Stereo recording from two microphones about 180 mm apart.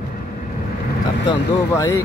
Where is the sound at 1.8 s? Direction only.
15° left (ahead or behind).